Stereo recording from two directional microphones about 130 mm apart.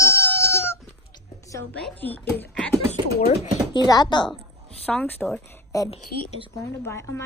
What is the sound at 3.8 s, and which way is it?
Speech, 35° left (ahead or behind).